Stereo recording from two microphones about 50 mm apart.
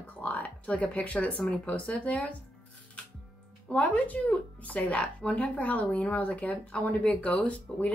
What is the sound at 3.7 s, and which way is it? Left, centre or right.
Speech, left.